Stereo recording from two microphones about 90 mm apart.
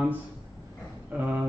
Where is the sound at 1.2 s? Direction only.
20° right (ahead or behind).